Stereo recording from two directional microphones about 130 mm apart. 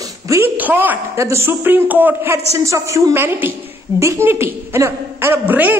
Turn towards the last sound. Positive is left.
turn(degrees=-15)  # may be behind; listen again after turning